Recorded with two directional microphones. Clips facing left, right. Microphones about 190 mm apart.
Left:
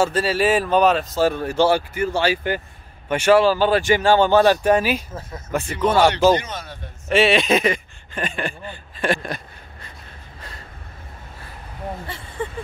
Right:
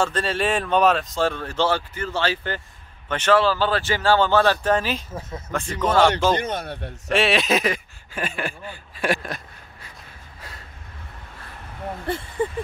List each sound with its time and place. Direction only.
0.0 s speech: 5° left (ahead or behind)
6.4 s speech: 60° right (ahead or behind)
7.1 s speech: centre (ahead or behind)